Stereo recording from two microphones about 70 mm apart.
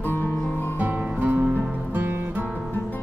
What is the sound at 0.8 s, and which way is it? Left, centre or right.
Music, right.